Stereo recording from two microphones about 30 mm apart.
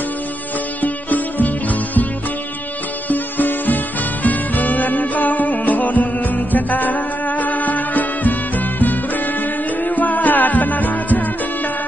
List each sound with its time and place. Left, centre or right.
0.8 s music: left
3.1 s music: left